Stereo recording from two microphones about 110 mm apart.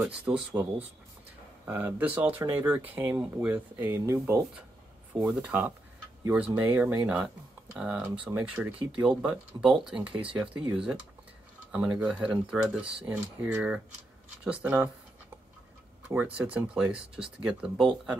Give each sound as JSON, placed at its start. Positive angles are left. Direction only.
{"t": 0.0, "sound": "speech", "side_deg": -10}
{"t": 5.3, "sound": "speech", "side_deg": -10}
{"t": 16.3, "sound": "speech", "side_deg": -10}